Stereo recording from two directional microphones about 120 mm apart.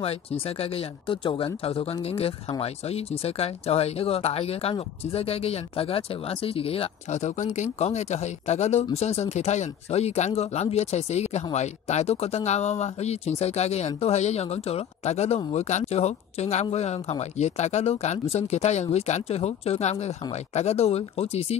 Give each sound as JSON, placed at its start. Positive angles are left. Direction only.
{"t": 0.0, "sound": "speech", "side_deg": 55}